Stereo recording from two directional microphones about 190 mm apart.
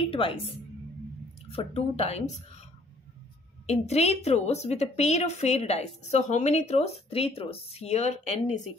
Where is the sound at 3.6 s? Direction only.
35° left (ahead or behind).